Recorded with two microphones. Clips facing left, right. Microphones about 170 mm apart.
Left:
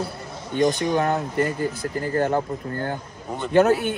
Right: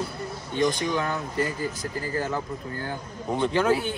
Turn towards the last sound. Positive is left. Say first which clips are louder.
# left 5 dB
turn(degrees=50)  # may be behind; listen again after turning